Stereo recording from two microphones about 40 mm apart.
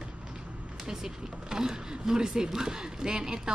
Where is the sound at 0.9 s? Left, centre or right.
Centre.